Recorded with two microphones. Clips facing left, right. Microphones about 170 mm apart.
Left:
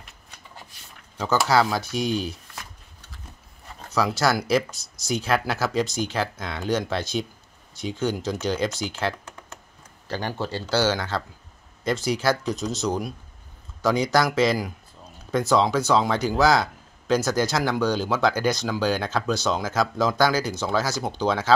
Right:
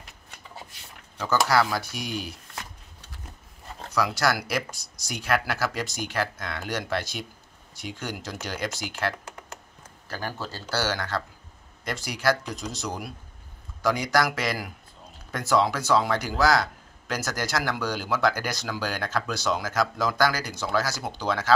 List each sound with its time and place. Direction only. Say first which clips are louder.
1.1 s speech: left 2 dB; 20° left (ahead or behind)
3.9 s speech: left 3 dB; 25° left (ahead or behind)